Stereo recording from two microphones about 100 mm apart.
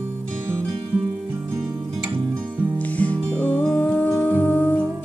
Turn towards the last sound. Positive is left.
turn(degrees=15)  # may be behind; listen again after turning